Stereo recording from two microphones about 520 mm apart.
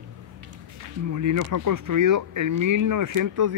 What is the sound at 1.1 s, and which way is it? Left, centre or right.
Speech, right.